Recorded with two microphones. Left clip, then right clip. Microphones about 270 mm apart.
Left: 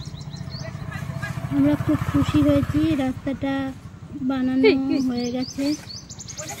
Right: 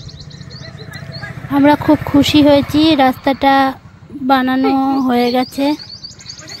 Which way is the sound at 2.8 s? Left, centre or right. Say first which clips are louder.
Right 12 dB; right.